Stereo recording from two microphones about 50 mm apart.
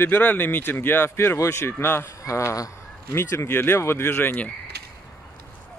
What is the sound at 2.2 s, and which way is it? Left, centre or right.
Speech, left.